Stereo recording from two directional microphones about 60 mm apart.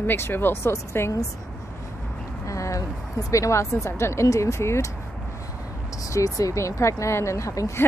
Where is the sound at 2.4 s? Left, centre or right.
Left.